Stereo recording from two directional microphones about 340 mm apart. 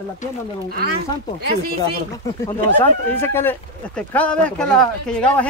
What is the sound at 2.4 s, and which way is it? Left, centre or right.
Speech, centre.